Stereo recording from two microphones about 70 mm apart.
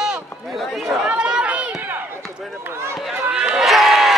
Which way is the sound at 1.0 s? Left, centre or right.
Centre.